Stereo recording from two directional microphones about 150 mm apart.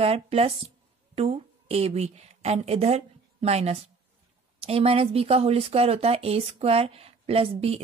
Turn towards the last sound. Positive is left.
turn(degrees=-40)  # may be behind; listen again after turning